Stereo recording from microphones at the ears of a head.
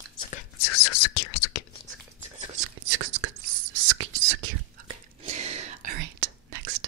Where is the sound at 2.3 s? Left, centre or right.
Right.